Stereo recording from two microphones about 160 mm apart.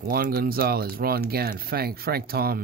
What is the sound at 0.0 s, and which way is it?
Speech, 70° right (ahead or behind).